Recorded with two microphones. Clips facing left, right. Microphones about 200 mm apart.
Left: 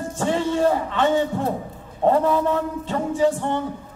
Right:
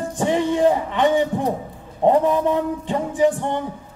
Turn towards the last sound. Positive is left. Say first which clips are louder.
# right 1 dB
turn(degrees=-15)  # may be behind; listen again after turning